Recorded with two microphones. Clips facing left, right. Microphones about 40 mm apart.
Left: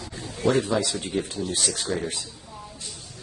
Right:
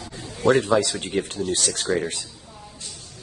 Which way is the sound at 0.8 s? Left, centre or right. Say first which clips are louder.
Right 2 dB; right.